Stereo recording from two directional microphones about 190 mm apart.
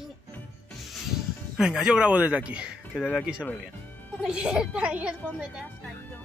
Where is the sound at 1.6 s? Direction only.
5° right (ahead or behind).